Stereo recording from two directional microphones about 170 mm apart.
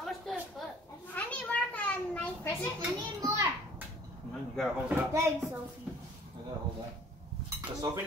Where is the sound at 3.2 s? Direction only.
20° right (ahead or behind).